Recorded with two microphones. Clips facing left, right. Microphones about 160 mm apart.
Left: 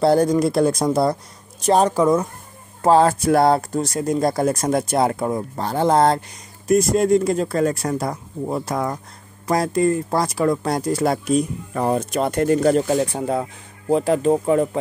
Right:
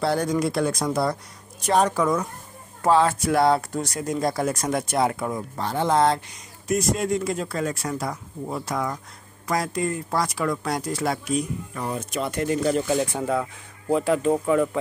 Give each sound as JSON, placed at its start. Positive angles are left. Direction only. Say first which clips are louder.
{"t": 0.0, "sound": "speech", "louder": "left 7 dB", "side_deg": 35}
{"t": 2.8, "sound": "speech", "louder": "left 4 dB", "side_deg": 40}
{"t": 3.7, "sound": "speech", "louder": "left 6 dB", "side_deg": 30}
{"t": 10.9, "sound": "speech", "louder": "left 8 dB", "side_deg": 45}
{"t": 12.9, "sound": "speech", "louder": "left 3 dB", "side_deg": 35}